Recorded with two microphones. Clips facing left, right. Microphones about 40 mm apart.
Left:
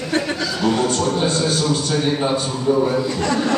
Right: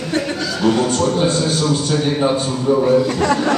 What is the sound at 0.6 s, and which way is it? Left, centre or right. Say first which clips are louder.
A man's voice: right 3 dB; centre.